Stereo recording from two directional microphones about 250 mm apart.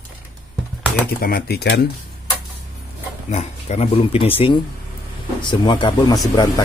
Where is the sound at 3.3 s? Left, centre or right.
Left.